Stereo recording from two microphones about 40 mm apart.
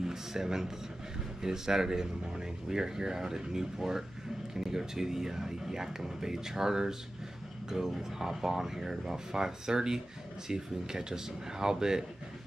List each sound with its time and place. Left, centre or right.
0.0 s speech: centre